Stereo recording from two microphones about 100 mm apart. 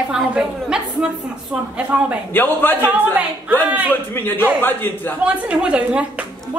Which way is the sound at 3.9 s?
20° left (ahead or behind).